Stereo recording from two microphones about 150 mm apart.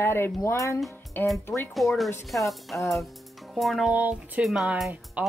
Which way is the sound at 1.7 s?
Centre (ahead or behind).